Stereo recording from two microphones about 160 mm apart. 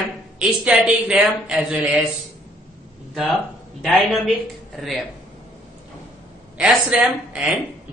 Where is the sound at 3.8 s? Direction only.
Centre (ahead or behind).